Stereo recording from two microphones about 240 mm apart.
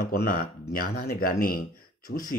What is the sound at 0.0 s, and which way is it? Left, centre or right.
Speech, left.